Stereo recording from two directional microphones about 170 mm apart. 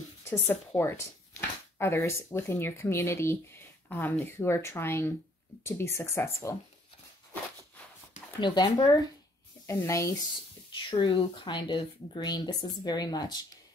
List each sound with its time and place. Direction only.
0.2 s speech: 15° left (ahead or behind)
8.4 s speech: 25° left (ahead or behind)
10.7 s speech: 30° left (ahead or behind)